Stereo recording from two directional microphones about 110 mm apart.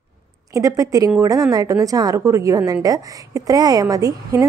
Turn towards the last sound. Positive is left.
turn(degrees=-30)  # may be behind; listen again after turning